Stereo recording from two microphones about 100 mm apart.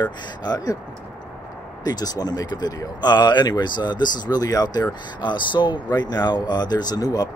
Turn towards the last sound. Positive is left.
turn(degrees=45)  # may be behind; listen again after turning